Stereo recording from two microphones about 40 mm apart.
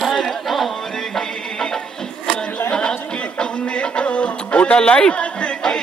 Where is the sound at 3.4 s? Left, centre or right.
Left.